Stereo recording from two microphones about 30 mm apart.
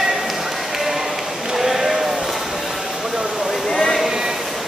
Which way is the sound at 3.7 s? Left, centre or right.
Centre.